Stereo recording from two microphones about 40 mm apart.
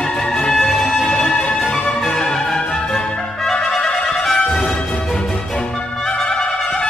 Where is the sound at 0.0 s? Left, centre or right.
Centre.